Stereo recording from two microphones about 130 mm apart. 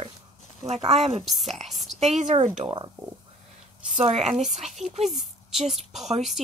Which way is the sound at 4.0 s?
55° right (ahead or behind).